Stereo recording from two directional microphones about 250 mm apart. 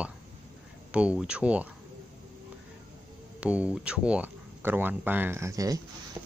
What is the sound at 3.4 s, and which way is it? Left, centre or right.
Speech, centre.